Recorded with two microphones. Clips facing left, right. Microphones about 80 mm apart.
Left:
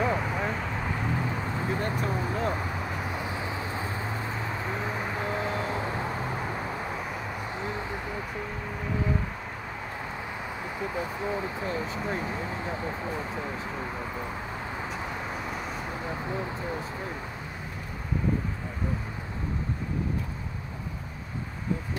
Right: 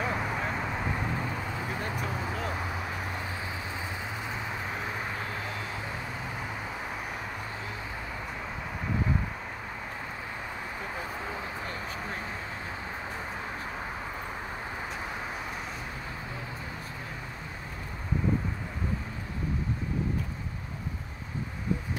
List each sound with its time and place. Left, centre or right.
0.0 s vehicle: centre
2.0 s vehicle: centre
4.6 s vehicle: centre
5.1 s vehicle: left